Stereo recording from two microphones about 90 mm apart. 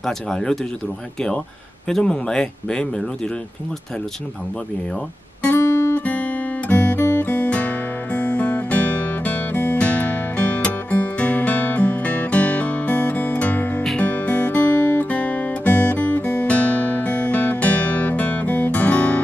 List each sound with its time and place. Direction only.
0.0 s speech: 5° left (ahead or behind)
1.9 s speech: 5° left (ahead or behind)
5.6 s guitar: 30° left (ahead or behind)
5.9 s guitar: 15° left (ahead or behind)
7.1 s music: 20° left (ahead or behind)